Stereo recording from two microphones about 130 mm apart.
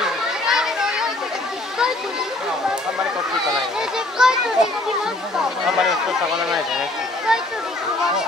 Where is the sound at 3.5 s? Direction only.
5° right (ahead or behind).